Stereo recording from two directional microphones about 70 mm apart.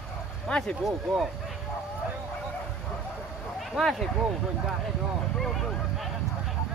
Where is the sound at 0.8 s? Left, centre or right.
Centre.